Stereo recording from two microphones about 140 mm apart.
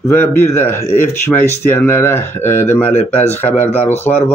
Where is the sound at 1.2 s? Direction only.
15° left (ahead or behind).